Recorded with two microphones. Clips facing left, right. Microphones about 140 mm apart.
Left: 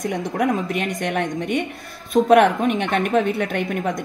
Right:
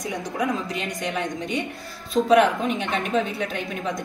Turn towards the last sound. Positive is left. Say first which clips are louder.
# left 5 dB
turn(degrees=55)  # may be behind; listen again after turning